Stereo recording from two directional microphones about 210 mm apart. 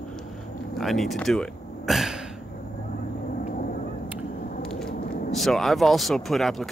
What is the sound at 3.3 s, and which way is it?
Vehicle, 40° left (ahead or behind).